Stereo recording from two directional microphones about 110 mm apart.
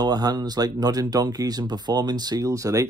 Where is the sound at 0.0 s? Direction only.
35° right (ahead or behind).